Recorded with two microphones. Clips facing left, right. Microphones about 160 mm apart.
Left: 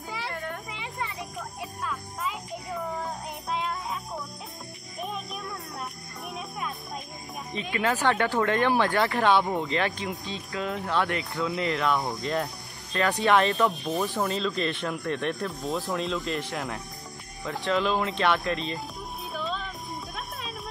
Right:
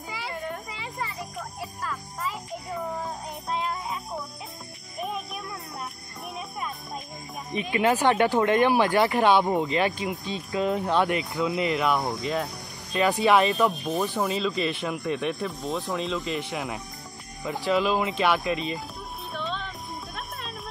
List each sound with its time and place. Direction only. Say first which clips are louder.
0.1 s a sound: right 1 dB; centre (ahead or behind)
1.6 s music: even; centre (ahead or behind)
7.7 s speech: right 4 dB; 20° right (ahead or behind)
12.0 s speech: right 1 dB; centre (ahead or behind)
19.3 s music: even; centre (ahead or behind)